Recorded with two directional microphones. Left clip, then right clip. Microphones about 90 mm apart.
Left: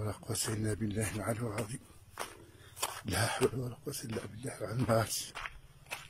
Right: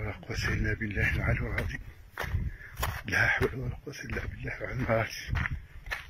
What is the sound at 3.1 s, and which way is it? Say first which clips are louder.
Speech: right 6 dB; 30° left (ahead or behind).